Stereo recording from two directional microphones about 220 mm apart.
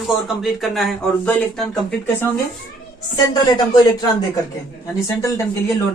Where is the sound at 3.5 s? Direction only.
20° left (ahead or behind).